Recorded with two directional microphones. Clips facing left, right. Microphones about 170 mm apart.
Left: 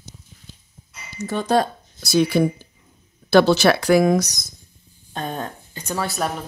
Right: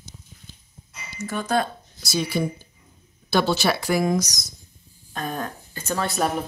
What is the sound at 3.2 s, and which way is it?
Speech, 75° left (ahead or behind).